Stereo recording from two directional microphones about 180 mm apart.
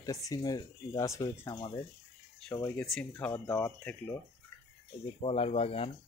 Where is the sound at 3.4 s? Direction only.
20° left (ahead or behind).